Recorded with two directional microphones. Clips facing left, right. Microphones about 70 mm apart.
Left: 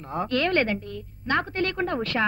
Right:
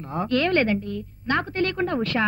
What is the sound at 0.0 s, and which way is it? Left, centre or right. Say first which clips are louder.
A woman's voice: right 2 dB; left.